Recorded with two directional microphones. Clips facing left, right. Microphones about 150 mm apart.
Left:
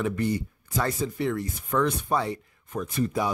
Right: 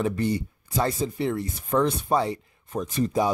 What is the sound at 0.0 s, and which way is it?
A man's voice, 30° right (ahead or behind).